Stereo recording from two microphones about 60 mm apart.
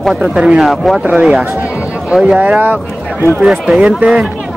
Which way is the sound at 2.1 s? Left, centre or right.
Centre.